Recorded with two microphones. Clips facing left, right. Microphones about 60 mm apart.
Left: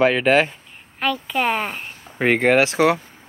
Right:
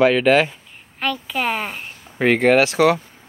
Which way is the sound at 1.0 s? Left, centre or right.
Centre.